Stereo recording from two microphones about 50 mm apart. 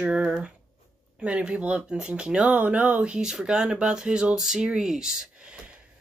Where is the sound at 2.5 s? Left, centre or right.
Right.